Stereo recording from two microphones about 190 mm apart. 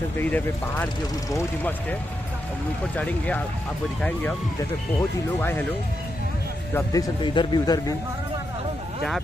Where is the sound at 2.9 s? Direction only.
10° left (ahead or behind).